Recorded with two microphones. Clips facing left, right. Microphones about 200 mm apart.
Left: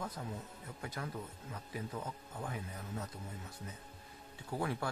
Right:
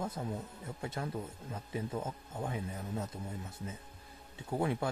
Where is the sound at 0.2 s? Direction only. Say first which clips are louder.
Right 5 dB; 25° right (ahead or behind).